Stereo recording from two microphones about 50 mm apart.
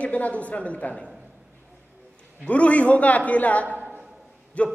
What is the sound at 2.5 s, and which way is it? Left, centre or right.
A woman's voice, left.